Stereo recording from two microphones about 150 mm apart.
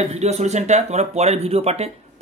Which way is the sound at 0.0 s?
45° right (ahead or behind).